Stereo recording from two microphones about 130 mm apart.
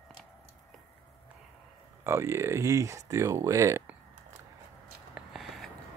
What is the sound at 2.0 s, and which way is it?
Speech, 20° right (ahead or behind).